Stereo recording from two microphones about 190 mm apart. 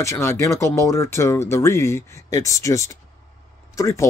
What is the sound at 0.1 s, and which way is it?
Speech, 15° left (ahead or behind).